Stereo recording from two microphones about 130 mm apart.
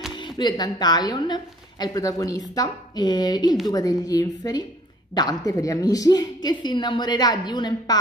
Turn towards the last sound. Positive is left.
turn(degrees=35)  # may be behind; listen again after turning